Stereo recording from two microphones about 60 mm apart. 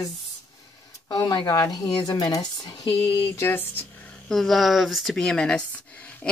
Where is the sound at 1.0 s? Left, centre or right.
Left.